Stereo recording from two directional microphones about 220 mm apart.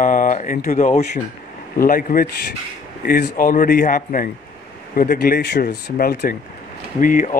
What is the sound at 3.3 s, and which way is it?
Speech, 40° left (ahead or behind).